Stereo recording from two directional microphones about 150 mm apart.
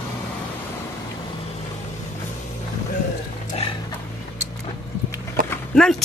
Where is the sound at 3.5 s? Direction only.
40° left (ahead or behind).